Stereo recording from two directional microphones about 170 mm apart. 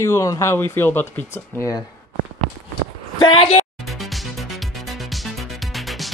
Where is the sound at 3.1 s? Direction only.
25° left (ahead or behind).